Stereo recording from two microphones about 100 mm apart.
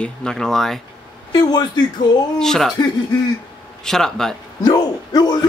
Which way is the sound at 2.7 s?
40° left (ahead or behind).